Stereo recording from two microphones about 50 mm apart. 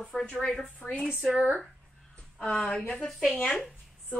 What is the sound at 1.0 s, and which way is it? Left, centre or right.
Speech, centre.